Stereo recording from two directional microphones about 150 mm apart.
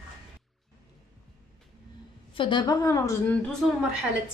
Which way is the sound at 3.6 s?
5° right (ahead or behind).